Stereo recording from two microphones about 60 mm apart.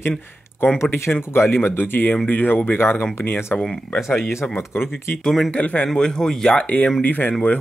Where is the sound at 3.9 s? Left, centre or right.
Centre.